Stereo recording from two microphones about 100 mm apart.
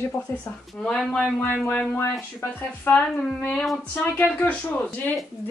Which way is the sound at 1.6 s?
20° left (ahead or behind).